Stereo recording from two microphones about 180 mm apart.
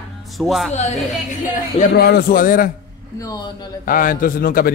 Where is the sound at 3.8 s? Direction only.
50° left (ahead or behind).